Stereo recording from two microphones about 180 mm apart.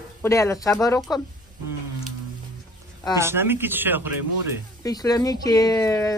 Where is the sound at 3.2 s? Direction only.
15° right (ahead or behind).